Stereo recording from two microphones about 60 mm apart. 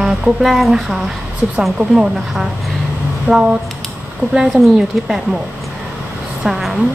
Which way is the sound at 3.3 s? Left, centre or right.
Right.